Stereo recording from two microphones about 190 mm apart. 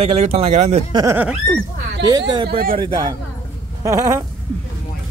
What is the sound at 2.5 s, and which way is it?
Speech, 50° right (ahead or behind).